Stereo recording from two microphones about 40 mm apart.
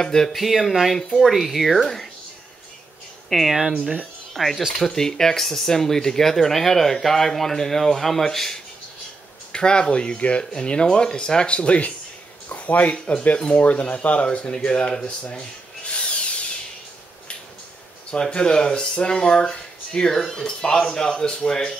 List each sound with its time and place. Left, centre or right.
0.0 s speech: centre
0.3 s speech: centre
3.3 s speech: centre
4.7 s speech: centre
9.5 s speech: left
12.4 s a sound: left
12.9 s speech: left
15.2 s tools: left
18.1 s speech: left
20.2 s speech: centre